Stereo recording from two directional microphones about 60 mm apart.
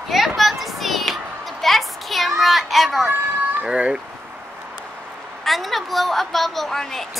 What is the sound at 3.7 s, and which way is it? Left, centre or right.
Speech, centre.